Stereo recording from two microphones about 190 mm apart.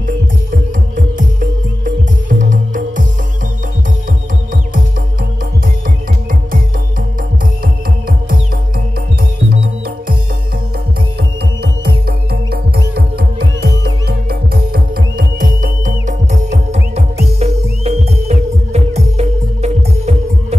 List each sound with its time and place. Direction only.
0.0 s music: 45° right (ahead or behind)
9.5 s music: 50° right (ahead or behind)
11.6 s music: 55° right (ahead or behind); by 20.5 s 35° right (ahead or behind)